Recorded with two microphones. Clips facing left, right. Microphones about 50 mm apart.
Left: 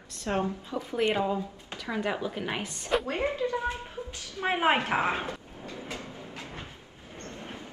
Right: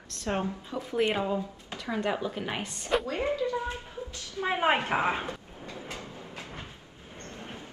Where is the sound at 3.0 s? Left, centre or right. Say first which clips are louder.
Even; left.